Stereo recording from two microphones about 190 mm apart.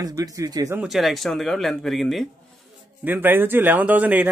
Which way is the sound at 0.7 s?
Centre (ahead or behind).